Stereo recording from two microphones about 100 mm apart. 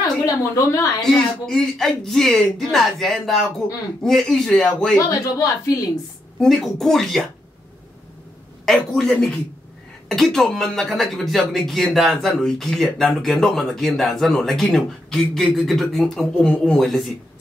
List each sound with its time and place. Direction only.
0.0 s a sound: 30° left (ahead or behind)
1.1 s speech: 5° left (ahead or behind)
5.0 s a woman's voice: 35° left (ahead or behind)
6.4 s speech: centre (ahead or behind)
8.6 s a man's voice: 5° left (ahead or behind)